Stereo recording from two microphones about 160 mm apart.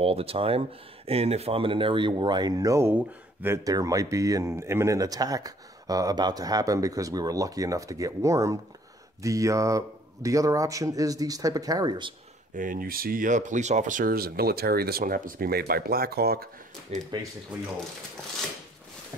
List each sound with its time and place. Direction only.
0.0 s speech: 35° right (ahead or behind)
12.5 s speech: 60° right (ahead or behind); by 16.4 s 75° right (ahead or behind)
16.9 s speech: 40° right (ahead or behind)